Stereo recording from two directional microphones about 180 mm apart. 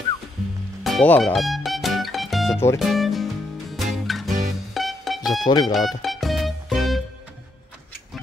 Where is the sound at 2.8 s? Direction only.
Centre (ahead or behind).